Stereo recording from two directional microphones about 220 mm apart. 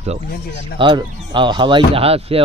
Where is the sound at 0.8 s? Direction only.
20° right (ahead or behind).